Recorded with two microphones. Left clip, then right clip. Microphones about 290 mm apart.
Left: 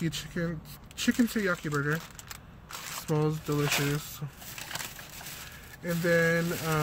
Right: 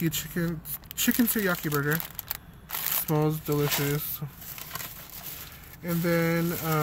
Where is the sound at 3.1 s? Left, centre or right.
Centre.